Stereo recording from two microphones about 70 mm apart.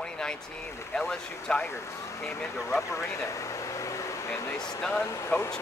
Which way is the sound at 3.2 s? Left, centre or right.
Left.